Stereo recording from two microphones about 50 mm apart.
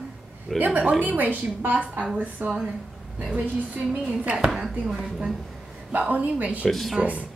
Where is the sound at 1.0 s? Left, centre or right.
Right.